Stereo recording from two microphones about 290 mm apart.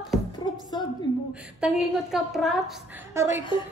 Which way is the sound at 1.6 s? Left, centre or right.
Centre.